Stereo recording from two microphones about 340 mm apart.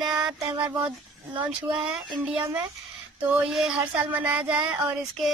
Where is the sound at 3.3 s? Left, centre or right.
Centre.